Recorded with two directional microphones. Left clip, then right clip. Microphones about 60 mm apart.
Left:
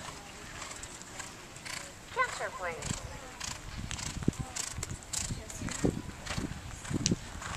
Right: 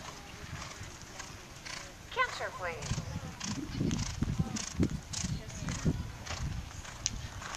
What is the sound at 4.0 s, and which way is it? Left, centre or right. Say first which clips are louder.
Horse: left 2 dB; centre.